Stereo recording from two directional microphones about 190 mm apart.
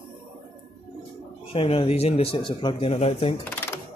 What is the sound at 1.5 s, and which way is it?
Speech, 30° left (ahead or behind).